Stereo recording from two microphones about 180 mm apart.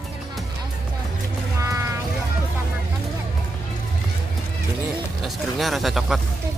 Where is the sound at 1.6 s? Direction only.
15° right (ahead or behind).